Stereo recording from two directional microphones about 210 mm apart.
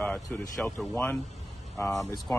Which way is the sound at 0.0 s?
10° left (ahead or behind).